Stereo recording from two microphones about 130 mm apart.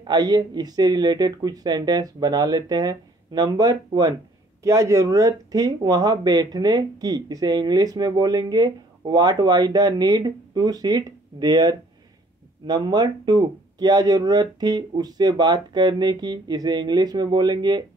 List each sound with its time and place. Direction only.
0.0 s speech: 35° right (ahead or behind)